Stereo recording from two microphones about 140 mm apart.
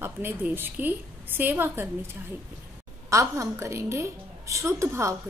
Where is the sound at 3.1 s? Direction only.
20° right (ahead or behind).